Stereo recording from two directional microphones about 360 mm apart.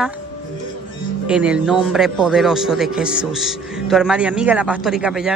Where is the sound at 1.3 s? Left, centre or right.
Centre.